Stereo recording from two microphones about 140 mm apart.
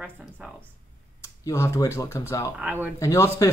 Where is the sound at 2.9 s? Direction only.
20° left (ahead or behind).